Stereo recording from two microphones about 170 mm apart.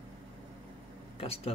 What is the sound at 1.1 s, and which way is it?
Speech, 35° left (ahead or behind).